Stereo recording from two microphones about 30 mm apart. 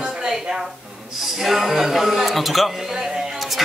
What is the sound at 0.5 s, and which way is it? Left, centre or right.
Speech, right.